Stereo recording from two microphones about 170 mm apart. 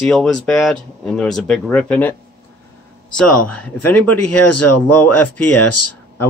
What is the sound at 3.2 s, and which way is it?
Speech, 10° left (ahead or behind).